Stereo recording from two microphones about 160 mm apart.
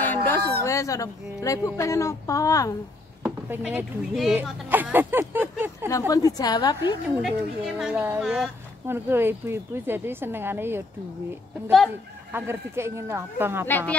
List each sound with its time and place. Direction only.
0.0 s a sound: 10° left (ahead or behind)
0.7 s a woman's voice: 20° left (ahead or behind)
3.2 s a woman's voice: 10° right (ahead or behind)
5.9 s a woman's voice: 20° left (ahead or behind)
7.2 s a woman's voice: centre (ahead or behind)
8.8 s a woman's voice: 15° right (ahead or behind)
12.3 s a woman's voice: 15° right (ahead or behind)
13.7 s speech: 10° left (ahead or behind)